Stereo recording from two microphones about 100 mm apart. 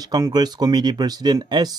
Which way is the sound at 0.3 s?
45° right (ahead or behind).